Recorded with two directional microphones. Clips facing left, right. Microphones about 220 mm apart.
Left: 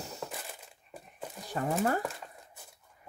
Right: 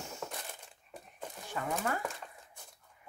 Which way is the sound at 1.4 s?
35° left (ahead or behind).